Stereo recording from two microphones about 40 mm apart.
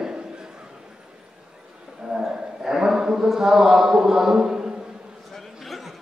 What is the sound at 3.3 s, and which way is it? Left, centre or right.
A man's voice, centre.